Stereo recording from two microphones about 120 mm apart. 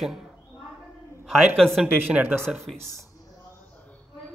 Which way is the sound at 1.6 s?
Centre (ahead or behind).